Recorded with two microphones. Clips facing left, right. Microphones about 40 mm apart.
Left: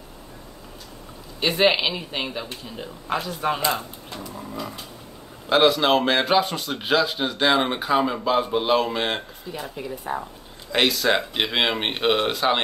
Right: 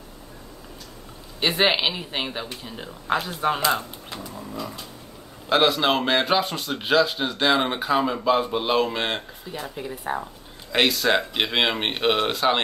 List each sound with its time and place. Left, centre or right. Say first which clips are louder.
1.6 s speech: left 2 dB; centre
3.1 s speech: right 2 dB; right
5.5 s a man's voice: left 2 dB; centre
10.1 s speech: right 1 dB; right
10.7 s a man's voice: even; centre